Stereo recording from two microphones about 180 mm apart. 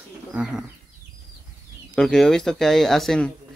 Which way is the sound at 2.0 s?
5° left (ahead or behind).